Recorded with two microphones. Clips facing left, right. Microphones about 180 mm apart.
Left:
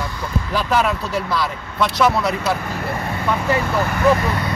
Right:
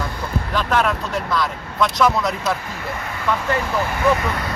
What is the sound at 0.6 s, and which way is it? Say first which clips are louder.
Speech: left 1 dB; 5° left (ahead or behind).